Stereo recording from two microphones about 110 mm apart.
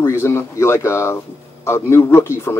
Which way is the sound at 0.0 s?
25° left (ahead or behind).